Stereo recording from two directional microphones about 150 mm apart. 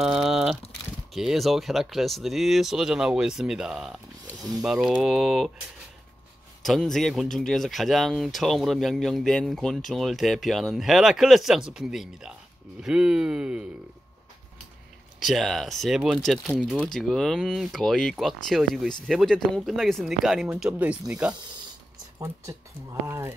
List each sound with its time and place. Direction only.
0.0 s typing: centre (ahead or behind)
1.1 s speech: centre (ahead or behind)
6.6 s speech: centre (ahead or behind)
15.1 s speech: centre (ahead or behind)
23.0 s speech: 15° right (ahead or behind)